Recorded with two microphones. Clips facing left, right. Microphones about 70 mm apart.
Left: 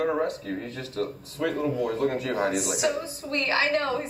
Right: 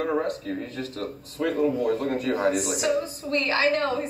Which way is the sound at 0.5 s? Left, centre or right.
Left.